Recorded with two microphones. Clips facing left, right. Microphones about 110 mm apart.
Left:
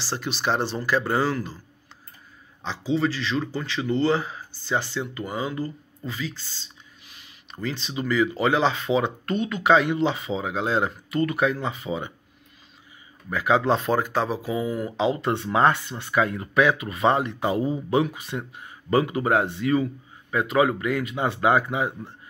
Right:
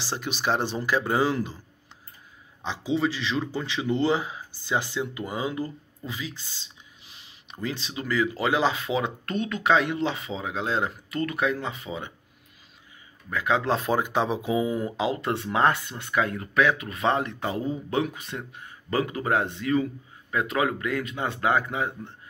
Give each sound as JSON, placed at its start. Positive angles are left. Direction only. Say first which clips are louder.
{"t": 0.0, "sound": "speech", "louder": "left 1 dB", "side_deg": -10}
{"t": 2.6, "sound": "speech", "louder": "left 1 dB", "side_deg": -15}
{"t": 7.6, "sound": "speech", "louder": "left 3 dB", "side_deg": -5}
{"t": 13.3, "sound": "speech", "louder": "left 3 dB", "side_deg": 5}
{"t": 13.9, "sound": "speech", "louder": "left 1 dB", "side_deg": -15}
{"t": 15.0, "sound": "speech", "louder": "left 3 dB", "side_deg": 0}
{"t": 18.4, "sound": "speech", "louder": "left 1 dB", "side_deg": 15}